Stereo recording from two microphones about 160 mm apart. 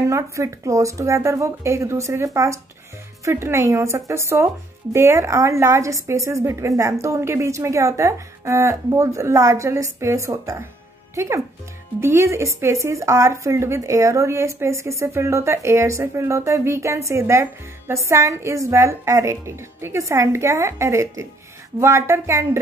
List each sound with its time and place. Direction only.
0.1 s speech: 20° right (ahead or behind)